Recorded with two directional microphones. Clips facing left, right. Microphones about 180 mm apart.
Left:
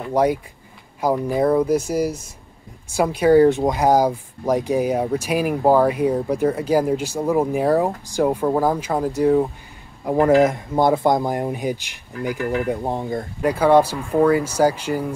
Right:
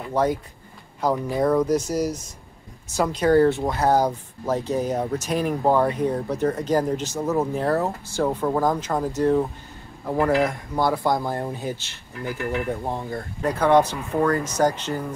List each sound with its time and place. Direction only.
0.1 s speech: 10° left (ahead or behind)